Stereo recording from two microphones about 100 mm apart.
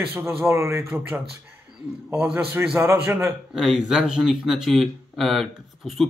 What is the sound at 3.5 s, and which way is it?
Speech, centre (ahead or behind).